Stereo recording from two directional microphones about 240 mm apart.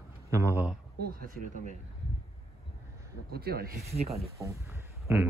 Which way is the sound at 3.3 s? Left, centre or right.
Right.